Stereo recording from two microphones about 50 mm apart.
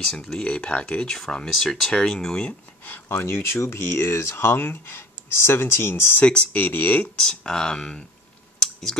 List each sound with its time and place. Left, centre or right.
0.0 s speech: centre
0.4 s speech: centre
2.8 s speech: left
6.5 s speech: left
7.2 s speech: centre